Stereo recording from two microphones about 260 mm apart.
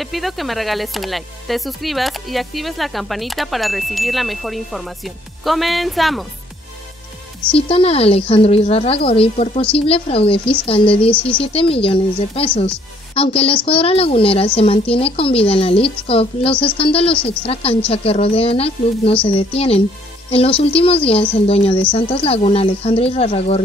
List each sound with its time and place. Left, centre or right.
0.0 s speech: centre
7.5 s a woman's voice: left